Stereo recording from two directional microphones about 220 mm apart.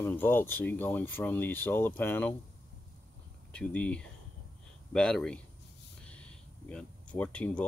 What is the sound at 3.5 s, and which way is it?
Speech, 5° left (ahead or behind).